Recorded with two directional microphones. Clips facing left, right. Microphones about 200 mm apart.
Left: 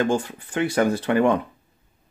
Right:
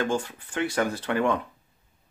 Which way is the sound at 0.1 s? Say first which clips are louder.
Left 4 dB; 15° left (ahead or behind).